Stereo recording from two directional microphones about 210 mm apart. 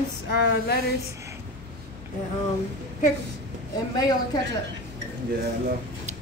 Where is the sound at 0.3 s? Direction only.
50° left (ahead or behind).